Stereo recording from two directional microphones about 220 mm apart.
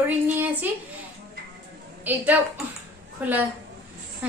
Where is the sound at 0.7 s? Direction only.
10° right (ahead or behind).